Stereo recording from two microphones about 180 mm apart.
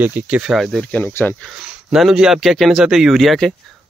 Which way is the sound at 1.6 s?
5° right (ahead or behind).